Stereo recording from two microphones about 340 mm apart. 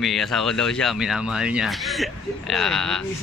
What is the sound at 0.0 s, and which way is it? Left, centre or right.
Speech, centre.